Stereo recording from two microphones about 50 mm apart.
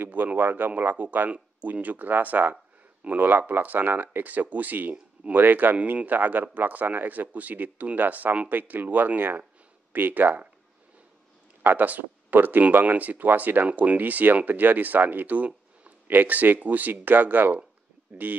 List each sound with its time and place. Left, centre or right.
0.0 s speech: right
5.8 s speech: right
11.6 s speech: right